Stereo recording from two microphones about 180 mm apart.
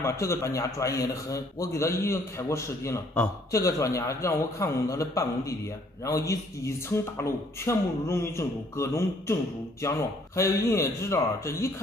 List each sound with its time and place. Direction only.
0.0 s a man's voice: 15° left (ahead or behind)